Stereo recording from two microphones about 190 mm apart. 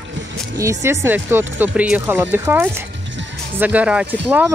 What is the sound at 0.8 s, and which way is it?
Speech, 15° right (ahead or behind).